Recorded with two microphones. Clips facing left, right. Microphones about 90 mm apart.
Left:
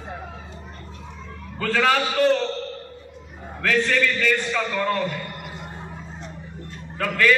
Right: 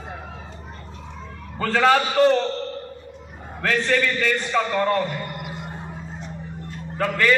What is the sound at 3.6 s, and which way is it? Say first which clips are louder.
A man's voice: even; 25° right (ahead or behind).